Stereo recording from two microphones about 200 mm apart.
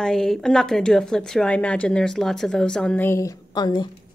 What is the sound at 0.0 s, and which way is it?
Speech, centre (ahead or behind).